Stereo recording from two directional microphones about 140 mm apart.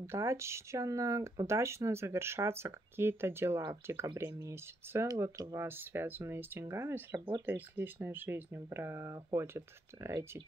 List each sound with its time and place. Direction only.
0.0 s speech: 20° right (ahead or behind)